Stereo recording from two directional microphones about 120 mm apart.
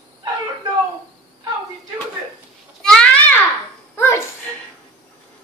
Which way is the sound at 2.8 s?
10° left (ahead or behind).